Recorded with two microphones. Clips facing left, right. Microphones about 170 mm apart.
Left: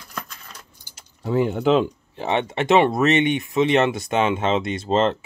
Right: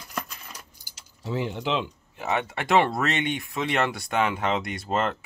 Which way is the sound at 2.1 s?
30° left (ahead or behind).